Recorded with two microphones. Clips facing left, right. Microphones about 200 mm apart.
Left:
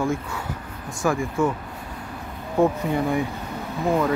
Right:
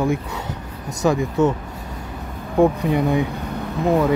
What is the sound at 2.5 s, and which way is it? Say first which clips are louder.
Speech: right 4 dB; 15° right (ahead or behind).